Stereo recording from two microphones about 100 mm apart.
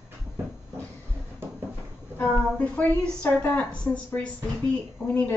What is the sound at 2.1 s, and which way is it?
A woman's voice, 15° left (ahead or behind).